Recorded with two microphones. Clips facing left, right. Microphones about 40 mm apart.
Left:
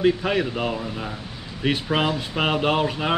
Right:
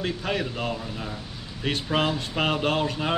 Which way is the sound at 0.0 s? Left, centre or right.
Centre.